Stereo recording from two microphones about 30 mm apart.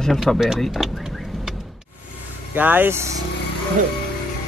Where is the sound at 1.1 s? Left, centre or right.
Centre.